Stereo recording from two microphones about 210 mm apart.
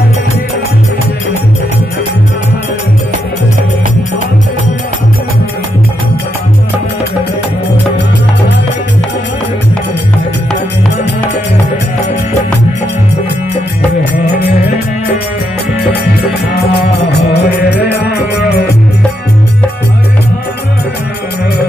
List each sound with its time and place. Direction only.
14.1 s music: 50° left (ahead or behind)
17.3 s music: 50° left (ahead or behind)